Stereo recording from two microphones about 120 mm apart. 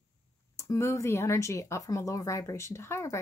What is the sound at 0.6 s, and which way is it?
Speech, 25° left (ahead or behind).